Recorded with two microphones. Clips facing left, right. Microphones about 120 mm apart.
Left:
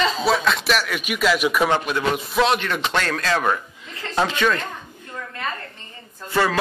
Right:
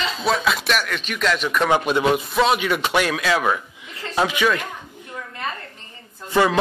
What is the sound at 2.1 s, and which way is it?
Speech, centre (ahead or behind).